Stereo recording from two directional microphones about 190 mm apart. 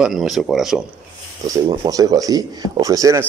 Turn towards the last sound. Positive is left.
turn(degrees=-15)  # may be behind; listen again after turning